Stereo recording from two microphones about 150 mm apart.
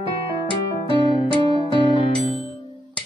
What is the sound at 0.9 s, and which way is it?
Music, 30° left (ahead or behind).